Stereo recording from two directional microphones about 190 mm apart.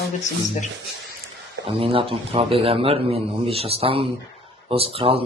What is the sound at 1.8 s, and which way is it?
A man's voice, 30° right (ahead or behind).